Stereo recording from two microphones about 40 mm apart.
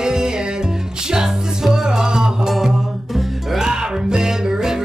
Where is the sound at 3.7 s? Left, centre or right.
Centre.